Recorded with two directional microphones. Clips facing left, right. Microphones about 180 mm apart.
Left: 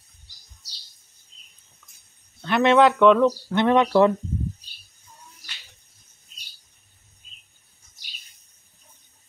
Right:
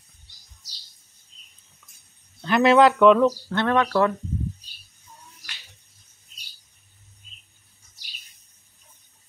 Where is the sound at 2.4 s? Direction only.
5° right (ahead or behind).